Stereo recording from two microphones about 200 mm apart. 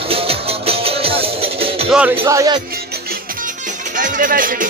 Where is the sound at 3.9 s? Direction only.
40° right (ahead or behind).